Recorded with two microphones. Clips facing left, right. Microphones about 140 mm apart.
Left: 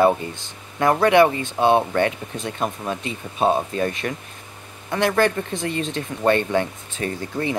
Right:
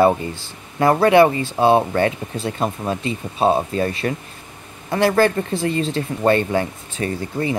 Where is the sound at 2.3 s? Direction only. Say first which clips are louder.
Right 3 dB; 30° right (ahead or behind).